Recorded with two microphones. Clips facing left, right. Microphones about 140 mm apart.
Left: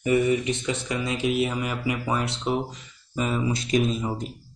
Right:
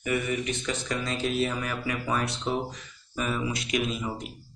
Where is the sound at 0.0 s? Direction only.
25° left (ahead or behind).